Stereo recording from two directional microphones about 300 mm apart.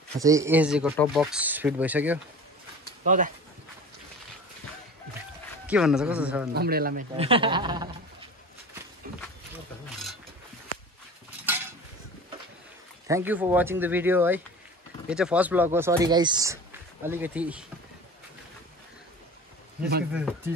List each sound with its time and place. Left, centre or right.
0.2 s speech: centre
3.0 s speech: right
5.7 s speech: centre
6.5 s a man's voice: right; by 7.9 s centre
13.0 s speech: centre
20.1 s speech: centre